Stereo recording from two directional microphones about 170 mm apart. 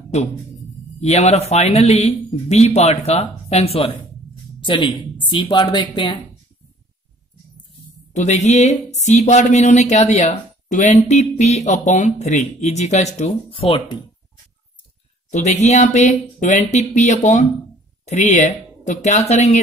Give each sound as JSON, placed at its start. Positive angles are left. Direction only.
{"t": 0.1, "sound": "speech", "side_deg": 40}
{"t": 5.3, "sound": "speech", "side_deg": 30}
{"t": 8.1, "sound": "speech", "side_deg": 45}
{"t": 15.3, "sound": "speech", "side_deg": 40}